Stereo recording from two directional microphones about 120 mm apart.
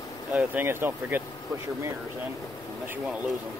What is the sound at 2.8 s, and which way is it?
Speech, 10° right (ahead or behind).